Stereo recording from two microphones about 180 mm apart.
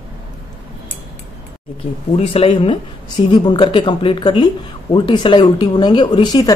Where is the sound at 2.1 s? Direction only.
30° left (ahead or behind).